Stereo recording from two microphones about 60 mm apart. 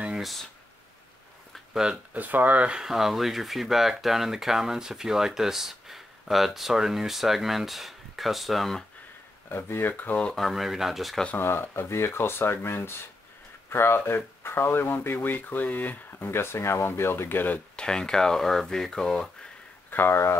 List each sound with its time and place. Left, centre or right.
1.7 s speech: centre
2.1 s speech: right
2.8 s speech: centre
9.5 s speech: left
10.3 s speech: centre
11.3 s speech: left
17.7 s speech: centre
19.9 s speech: left